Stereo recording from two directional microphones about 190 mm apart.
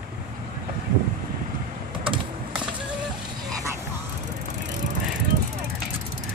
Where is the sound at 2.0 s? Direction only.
25° right (ahead or behind).